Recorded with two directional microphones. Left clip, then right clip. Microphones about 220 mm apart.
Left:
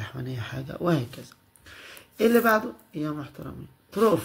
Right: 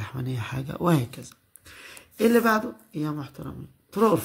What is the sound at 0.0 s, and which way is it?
Speech, 25° right (ahead or behind).